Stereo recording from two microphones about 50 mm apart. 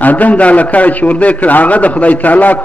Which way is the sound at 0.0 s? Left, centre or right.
Left.